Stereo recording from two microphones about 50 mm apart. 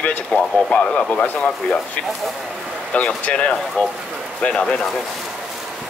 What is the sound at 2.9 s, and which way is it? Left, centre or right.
Speech, left.